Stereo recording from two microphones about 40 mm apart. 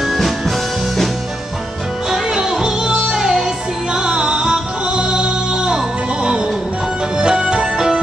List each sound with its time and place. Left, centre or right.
0.0 s music: centre
2.0 s music: centre
7.2 s music: right